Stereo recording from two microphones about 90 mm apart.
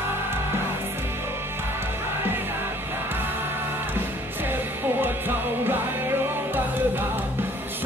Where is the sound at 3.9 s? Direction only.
25° right (ahead or behind).